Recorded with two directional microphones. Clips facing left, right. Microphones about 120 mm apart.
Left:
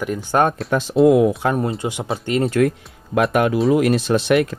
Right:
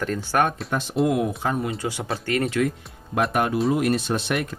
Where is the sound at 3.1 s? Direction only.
90° left.